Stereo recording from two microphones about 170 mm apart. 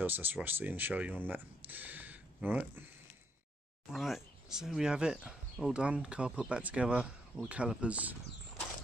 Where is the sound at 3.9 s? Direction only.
Centre (ahead or behind).